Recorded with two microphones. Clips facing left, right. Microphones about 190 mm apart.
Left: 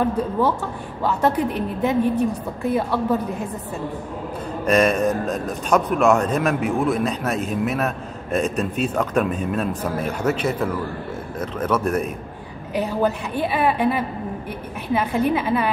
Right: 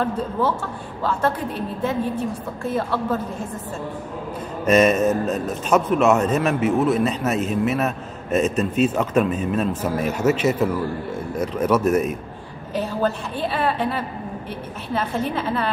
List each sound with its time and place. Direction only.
0.0 s a woman's voice: 15° left (ahead or behind)
4.6 s a man's voice: 5° right (ahead or behind)
12.7 s a woman's voice: 15° left (ahead or behind)